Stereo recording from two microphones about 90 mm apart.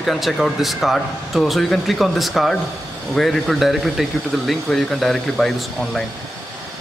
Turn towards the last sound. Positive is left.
turn(degrees=0)  # may be behind; listen again after turning